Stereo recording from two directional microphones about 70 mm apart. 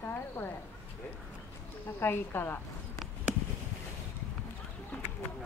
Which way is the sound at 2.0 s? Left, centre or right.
Left.